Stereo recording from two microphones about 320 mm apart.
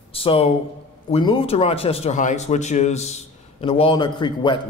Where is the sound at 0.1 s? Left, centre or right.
Centre.